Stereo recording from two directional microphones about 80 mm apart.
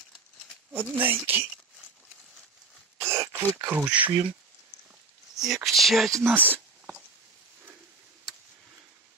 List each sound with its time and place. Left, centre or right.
0.7 s speech: centre
3.0 s throat clearing: right
3.6 s speech: right
5.3 s a sound: centre
5.7 s speech: centre
6.2 s a sound: right